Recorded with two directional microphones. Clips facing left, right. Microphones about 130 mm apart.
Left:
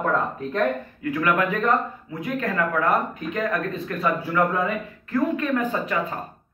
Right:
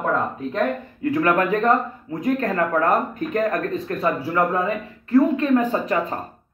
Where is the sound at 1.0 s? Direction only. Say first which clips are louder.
Right 5 dB; 35° right (ahead or behind).